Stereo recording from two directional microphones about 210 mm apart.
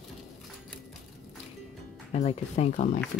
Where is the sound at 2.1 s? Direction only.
30° left (ahead or behind).